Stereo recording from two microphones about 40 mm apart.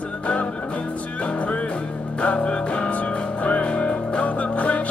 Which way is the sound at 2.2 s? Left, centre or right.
Left.